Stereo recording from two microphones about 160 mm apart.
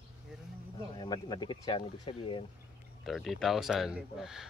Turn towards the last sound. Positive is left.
turn(degrees=-5)  # may be behind; listen again after turning